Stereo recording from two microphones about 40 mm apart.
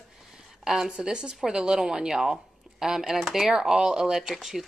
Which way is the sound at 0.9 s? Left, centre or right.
Right.